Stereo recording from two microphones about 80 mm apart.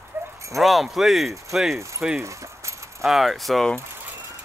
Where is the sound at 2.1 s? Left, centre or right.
Right.